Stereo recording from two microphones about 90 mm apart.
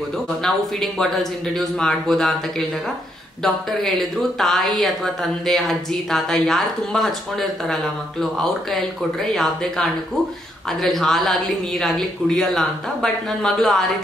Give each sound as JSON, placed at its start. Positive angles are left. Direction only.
{"t": 0.4, "sound": "a woman's voice", "side_deg": 5}
{"t": 3.4, "sound": "a woman's voice", "side_deg": 0}